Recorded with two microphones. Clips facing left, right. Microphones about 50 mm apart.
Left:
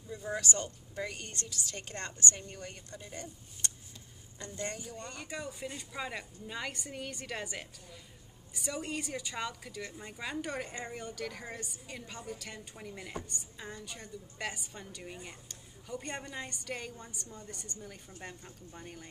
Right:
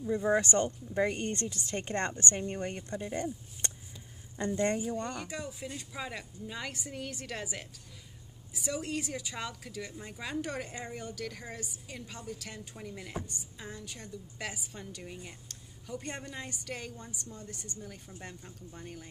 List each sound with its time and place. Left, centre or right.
0.0 s speech: right
4.4 s speech: right
4.9 s a woman's voice: centre